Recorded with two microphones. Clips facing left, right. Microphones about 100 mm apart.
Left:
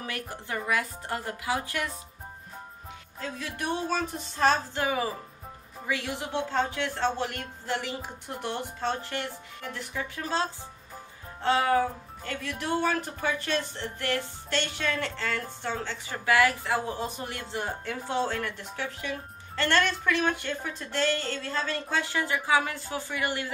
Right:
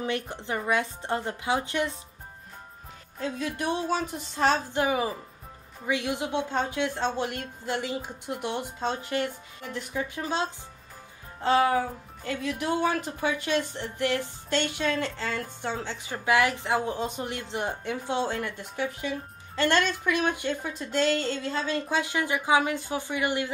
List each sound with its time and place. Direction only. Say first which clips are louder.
0.0 s a woman's voice: right 6 dB; 25° right (ahead or behind)
3.2 s a woman's voice: right 4 dB; 20° right (ahead or behind)
12.3 s a woman's voice: right 3 dB; 15° right (ahead or behind)